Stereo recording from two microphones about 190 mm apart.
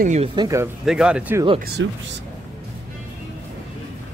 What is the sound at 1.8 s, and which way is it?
Speech, 75° right (ahead or behind).